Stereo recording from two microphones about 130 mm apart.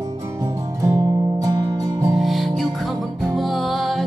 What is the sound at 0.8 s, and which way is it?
Music, 25° right (ahead or behind).